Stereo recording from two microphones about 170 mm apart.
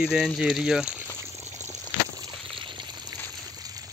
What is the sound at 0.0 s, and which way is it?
Speech, centre (ahead or behind).